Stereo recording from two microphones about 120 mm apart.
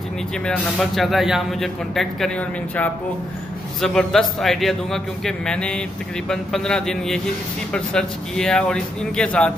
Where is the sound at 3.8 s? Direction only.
5° left (ahead or behind).